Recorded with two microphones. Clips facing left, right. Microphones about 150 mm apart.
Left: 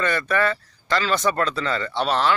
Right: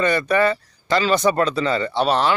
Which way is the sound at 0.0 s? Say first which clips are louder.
Right 4 dB; 15° right (ahead or behind).